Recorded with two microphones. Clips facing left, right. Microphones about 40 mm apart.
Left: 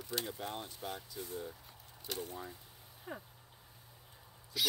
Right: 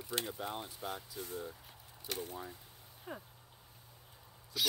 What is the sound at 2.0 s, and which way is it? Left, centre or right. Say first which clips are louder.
Speech: even; right.